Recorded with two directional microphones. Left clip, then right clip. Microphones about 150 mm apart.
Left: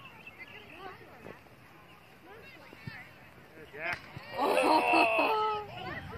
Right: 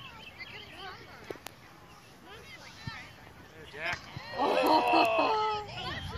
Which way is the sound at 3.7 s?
30° left (ahead or behind).